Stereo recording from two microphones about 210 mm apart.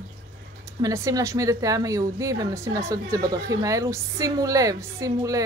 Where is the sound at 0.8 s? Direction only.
15° right (ahead or behind).